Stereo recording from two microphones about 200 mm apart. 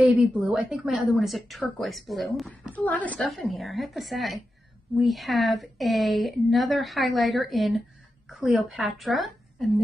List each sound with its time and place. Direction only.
0.0 s a woman's voice: 5° right (ahead or behind)